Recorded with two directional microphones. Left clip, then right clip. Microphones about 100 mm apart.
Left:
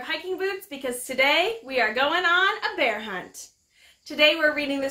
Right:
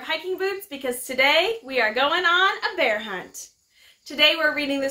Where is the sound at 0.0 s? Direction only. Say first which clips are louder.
Right 2 dB; 25° right (ahead or behind).